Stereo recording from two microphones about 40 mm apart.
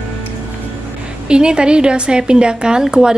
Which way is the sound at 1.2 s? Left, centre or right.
Right.